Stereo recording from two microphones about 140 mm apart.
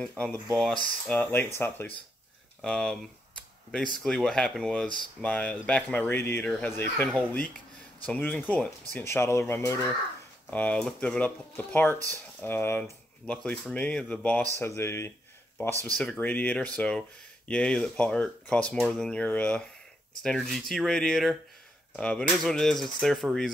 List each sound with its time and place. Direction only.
0.2 s speech: 10° left (ahead or behind)
4.0 s speech: 5° left (ahead or behind)
4.8 s speech: 35° left (ahead or behind)
5.2 s speech: 10° left (ahead or behind)
14.8 s a sound: 20° left (ahead or behind)
16.0 s speech: 10° left (ahead or behind)